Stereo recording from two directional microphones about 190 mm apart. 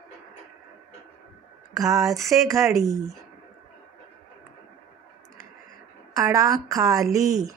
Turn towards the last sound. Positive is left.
turn(degrees=-20)  # may be behind; listen again after turning